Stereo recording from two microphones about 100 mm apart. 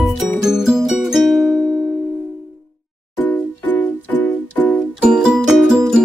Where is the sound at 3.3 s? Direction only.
15° left (ahead or behind).